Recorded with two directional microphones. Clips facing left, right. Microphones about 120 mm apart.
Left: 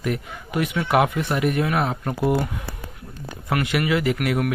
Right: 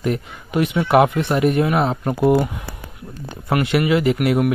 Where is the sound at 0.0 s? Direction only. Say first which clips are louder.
Right 4 dB; 25° right (ahead or behind).